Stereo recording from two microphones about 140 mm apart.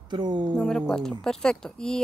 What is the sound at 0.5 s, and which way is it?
Speech, 5° left (ahead or behind).